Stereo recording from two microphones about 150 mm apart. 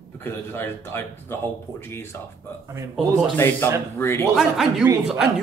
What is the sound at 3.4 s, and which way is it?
Speech, 15° left (ahead or behind).